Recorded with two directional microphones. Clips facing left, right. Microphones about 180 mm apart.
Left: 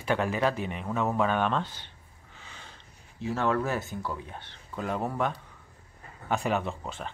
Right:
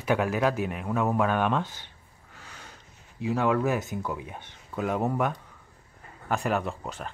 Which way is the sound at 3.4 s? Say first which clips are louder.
Right 3 dB; 5° right (ahead or behind).